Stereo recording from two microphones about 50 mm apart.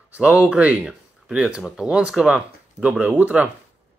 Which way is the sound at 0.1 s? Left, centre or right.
Right.